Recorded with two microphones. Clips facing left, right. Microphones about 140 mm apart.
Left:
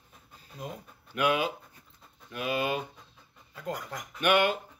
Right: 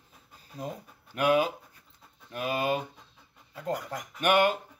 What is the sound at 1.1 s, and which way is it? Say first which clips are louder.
Speech: right 3 dB; 40° right (ahead or behind).